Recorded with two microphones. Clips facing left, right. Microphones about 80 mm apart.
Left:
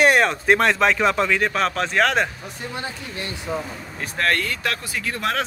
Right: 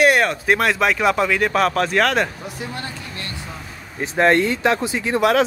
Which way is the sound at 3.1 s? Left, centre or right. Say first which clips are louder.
Left 5 dB; centre.